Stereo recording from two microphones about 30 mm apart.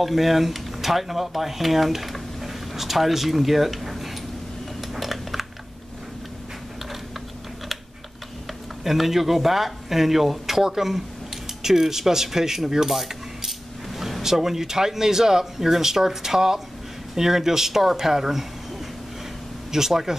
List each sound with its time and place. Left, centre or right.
0.0 s speech: centre
4.9 s a sound: centre
8.8 s speech: centre
14.4 s speech: centre
19.9 s speech: centre